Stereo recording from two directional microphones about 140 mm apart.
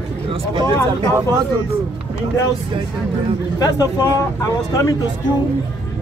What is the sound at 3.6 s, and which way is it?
Speech, 25° left (ahead or behind).